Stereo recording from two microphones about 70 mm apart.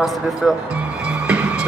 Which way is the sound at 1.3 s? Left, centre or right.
Centre.